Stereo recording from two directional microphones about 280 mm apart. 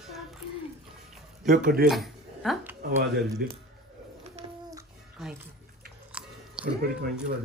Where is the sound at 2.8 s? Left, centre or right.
Right.